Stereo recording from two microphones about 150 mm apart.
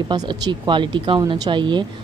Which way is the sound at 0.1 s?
30° right (ahead or behind).